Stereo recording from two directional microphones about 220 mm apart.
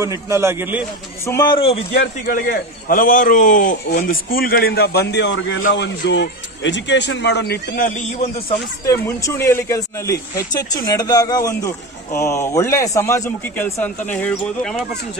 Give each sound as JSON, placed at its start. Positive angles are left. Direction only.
{"t": 0.0, "sound": "a man's voice", "side_deg": -15}
{"t": 1.2, "sound": "speech", "side_deg": 15}
{"t": 1.9, "sound": "a man's voice", "side_deg": 45}
{"t": 8.2, "sound": "a man's voice", "side_deg": 30}
{"t": 8.8, "sound": "a man's voice", "side_deg": 15}